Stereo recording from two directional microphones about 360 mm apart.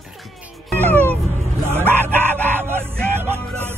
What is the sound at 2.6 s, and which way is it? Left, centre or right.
Speech, centre.